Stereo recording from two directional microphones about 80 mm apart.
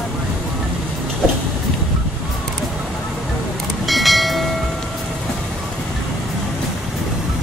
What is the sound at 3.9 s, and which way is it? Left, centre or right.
Train, centre.